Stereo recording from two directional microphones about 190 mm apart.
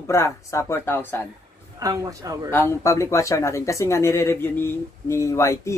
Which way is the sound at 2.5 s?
15° left (ahead or behind).